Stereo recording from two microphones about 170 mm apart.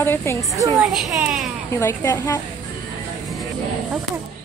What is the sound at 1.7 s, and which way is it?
Speech, 15° left (ahead or behind).